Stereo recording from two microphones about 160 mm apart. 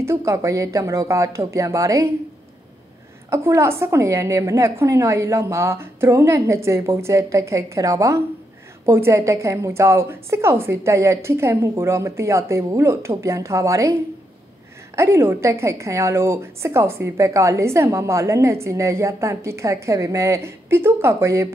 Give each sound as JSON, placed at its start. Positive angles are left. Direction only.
{"t": 0.0, "sound": "a woman's voice", "side_deg": -15}
{"t": 3.3, "sound": "a woman's voice", "side_deg": -15}
{"t": 15.0, "sound": "a woman's voice", "side_deg": -15}